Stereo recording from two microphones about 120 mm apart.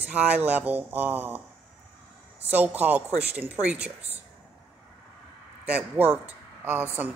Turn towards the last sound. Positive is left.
turn(degrees=-15)  # may be behind; listen again after turning